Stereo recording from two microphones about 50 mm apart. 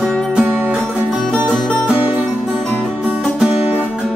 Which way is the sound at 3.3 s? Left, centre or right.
Centre.